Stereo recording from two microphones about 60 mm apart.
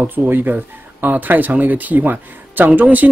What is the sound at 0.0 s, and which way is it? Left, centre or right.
Speech, right.